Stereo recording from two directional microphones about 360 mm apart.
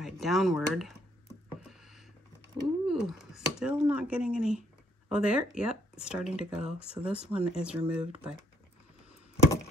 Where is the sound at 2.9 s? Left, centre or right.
Centre.